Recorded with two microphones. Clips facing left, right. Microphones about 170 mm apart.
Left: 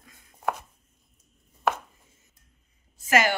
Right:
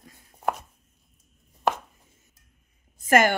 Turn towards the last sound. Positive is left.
turn(degrees=-50)  # may be behind; listen again after turning